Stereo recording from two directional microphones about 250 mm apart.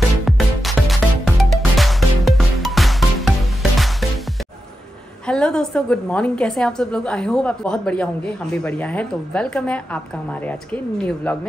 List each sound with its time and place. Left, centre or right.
0.2 s music: centre
5.2 s a woman's voice: centre